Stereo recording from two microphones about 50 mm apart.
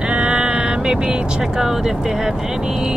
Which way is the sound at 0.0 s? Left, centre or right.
Right.